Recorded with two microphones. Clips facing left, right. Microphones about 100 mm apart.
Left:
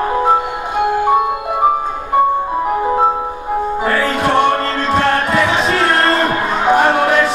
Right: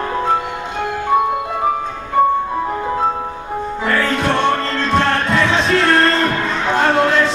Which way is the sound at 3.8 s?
15° left (ahead or behind).